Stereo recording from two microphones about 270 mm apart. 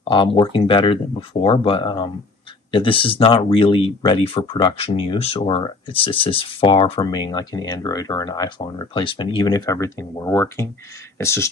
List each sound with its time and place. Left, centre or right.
0.0 s speech: centre